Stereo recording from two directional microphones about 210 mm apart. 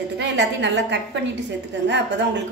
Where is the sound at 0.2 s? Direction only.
60° right (ahead or behind).